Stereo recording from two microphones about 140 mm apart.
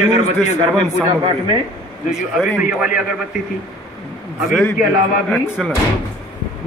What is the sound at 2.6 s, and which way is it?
Speech, 5° right (ahead or behind).